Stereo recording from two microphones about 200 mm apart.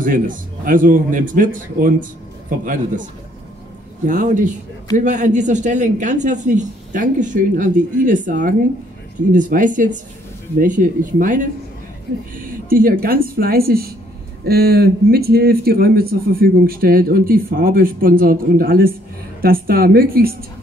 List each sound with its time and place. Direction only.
0.0 s speech: 45° right (ahead or behind)